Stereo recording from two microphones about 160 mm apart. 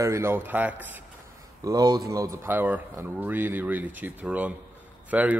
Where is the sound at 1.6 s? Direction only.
25° right (ahead or behind).